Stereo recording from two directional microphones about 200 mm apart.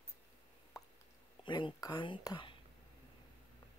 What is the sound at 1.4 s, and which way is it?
Speech, 25° left (ahead or behind).